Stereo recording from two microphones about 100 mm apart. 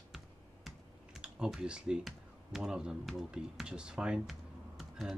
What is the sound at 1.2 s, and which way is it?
Speech, 10° right (ahead or behind).